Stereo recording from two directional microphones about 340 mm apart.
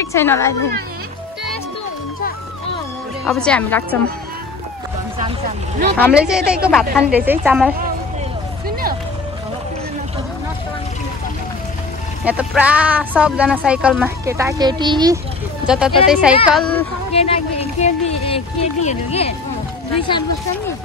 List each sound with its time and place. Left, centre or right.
0.0 s speech: centre
3.3 s speech: centre
5.9 s speech: centre
12.3 s speech: centre
15.6 s speech: centre
17.1 s speech: centre